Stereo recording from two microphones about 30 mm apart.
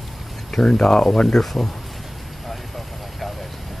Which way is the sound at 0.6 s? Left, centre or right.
Left.